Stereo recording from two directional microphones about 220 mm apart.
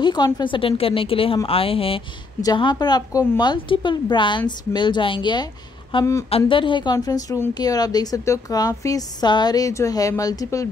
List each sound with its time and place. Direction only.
0.0 s a woman's voice: 20° left (ahead or behind)